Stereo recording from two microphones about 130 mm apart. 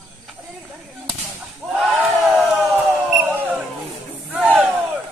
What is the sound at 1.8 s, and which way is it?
Crowd, 5° right (ahead or behind).